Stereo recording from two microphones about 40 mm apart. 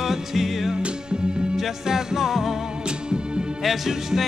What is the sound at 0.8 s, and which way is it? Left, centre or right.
Music, right.